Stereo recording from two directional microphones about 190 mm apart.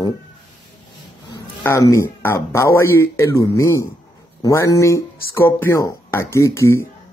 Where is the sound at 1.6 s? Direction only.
15° left (ahead or behind).